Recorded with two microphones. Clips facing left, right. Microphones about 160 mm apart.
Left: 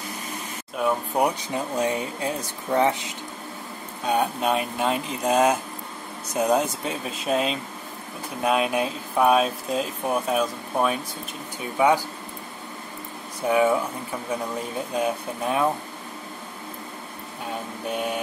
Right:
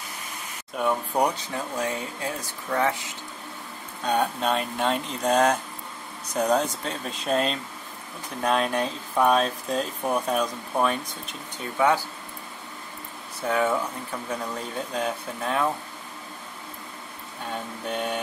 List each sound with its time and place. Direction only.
0.7 s speech: 5° left (ahead or behind)
1.4 s speech: 20° left (ahead or behind)
4.0 s speech: 5° left (ahead or behind)
11.8 s speech: 15° left (ahead or behind)
13.4 s speech: 10° left (ahead or behind)
15.0 s speech: 10° left (ahead or behind)
17.8 s speech: 5° left (ahead or behind)